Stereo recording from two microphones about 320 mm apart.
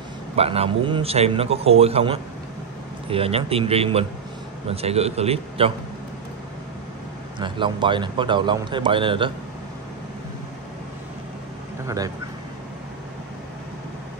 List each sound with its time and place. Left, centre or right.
0.4 s a man's voice: centre
7.3 s speech: centre